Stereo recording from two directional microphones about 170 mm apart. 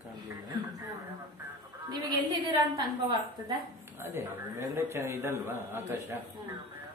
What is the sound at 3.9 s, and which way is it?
A man's voice, 15° right (ahead or behind).